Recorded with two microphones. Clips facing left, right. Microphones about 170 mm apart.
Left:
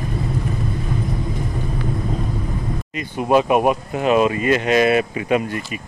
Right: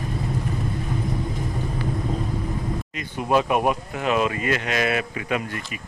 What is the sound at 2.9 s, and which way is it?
Speech, 15° left (ahead or behind).